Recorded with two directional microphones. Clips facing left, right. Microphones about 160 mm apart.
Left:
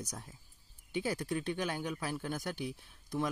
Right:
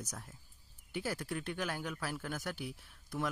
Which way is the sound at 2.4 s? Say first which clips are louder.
Left 3 dB; 5° right (ahead or behind).